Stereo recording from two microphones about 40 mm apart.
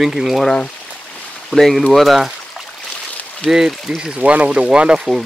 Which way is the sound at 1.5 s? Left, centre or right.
Centre.